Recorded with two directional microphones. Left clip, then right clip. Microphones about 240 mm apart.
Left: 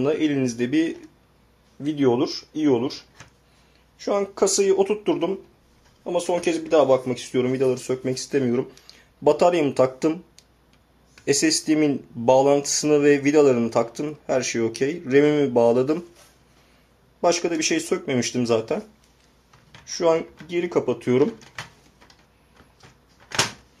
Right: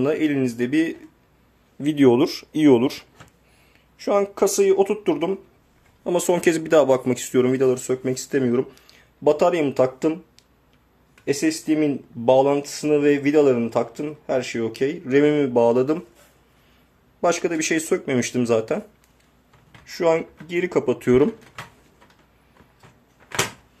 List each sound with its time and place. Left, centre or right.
0.0 s speech: centre
1.8 s speech: right
4.0 s speech: centre
6.0 s speech: right; by 10.1 s centre
11.2 s speech: centre
17.2 s speech: centre
19.9 s speech: centre